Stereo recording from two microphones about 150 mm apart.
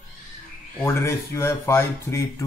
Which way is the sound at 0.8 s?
20° left (ahead or behind).